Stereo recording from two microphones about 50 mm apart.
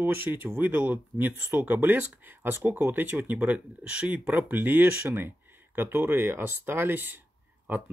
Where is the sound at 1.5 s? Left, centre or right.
Right.